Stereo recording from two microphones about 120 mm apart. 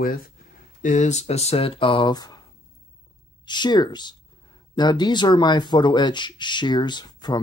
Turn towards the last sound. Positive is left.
turn(degrees=35)  # may be behind; listen again after turning